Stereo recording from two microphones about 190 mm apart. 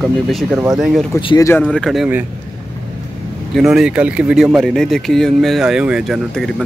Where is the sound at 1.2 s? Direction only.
20° left (ahead or behind).